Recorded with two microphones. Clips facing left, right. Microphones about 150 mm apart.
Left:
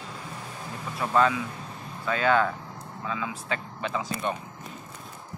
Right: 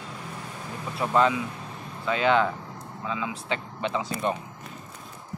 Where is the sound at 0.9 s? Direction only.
20° right (ahead or behind).